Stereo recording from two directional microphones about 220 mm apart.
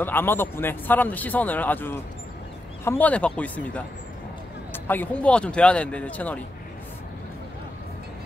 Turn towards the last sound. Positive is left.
turn(degrees=5)  # may be behind; listen again after turning